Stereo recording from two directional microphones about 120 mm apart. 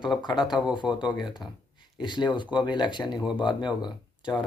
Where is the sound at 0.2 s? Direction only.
35° left (ahead or behind).